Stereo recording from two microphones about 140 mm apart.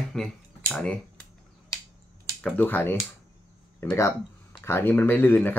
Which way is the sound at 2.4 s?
15° left (ahead or behind).